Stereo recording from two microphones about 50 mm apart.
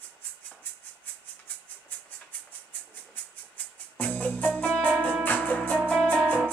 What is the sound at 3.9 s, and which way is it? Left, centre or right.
Music, left.